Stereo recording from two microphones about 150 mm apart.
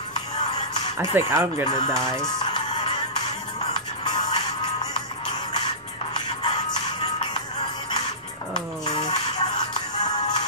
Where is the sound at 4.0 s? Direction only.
30° left (ahead or behind).